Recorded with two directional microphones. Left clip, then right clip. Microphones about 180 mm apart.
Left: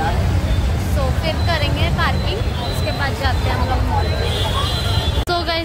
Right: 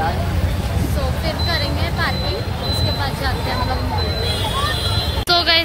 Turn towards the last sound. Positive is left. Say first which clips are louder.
# right 5 dB
turn(degrees=15)  # may be behind; listen again after turning